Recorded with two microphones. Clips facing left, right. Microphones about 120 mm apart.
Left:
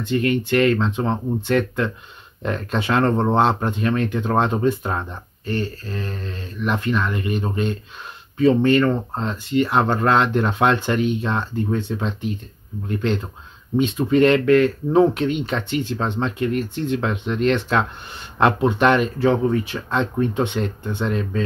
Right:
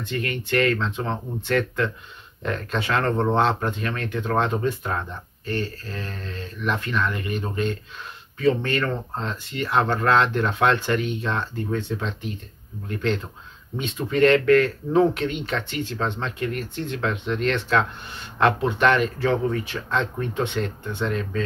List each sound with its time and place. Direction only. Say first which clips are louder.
0.1 s speech: left 6 dB; 20° left (ahead or behind)
13.7 s speech: left 5 dB; 15° left (ahead or behind)